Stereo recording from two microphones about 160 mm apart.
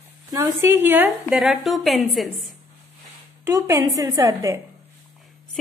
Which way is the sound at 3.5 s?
15° right (ahead or behind).